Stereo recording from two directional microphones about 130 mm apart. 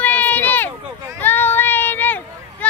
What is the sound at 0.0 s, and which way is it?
Run, 15° left (ahead or behind).